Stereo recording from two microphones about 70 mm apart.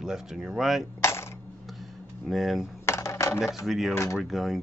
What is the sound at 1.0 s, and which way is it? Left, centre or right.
Coin, left.